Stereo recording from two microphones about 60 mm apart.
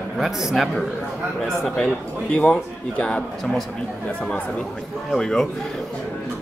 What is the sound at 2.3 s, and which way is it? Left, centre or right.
Speech, left.